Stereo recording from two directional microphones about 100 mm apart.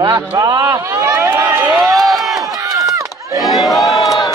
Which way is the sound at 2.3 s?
35° right (ahead or behind).